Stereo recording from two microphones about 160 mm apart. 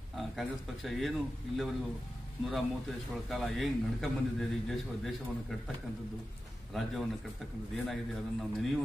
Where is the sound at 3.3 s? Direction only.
Centre (ahead or behind).